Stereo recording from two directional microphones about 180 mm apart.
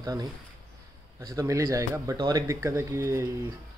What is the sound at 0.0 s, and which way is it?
Speech, 20° right (ahead or behind).